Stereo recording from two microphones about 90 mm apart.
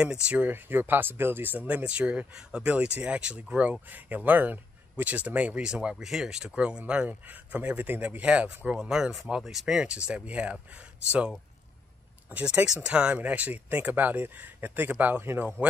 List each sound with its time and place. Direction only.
0.0 s speech: 15° right (ahead or behind)